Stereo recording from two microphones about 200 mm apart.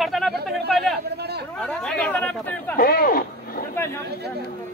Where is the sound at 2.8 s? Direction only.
50° left (ahead or behind).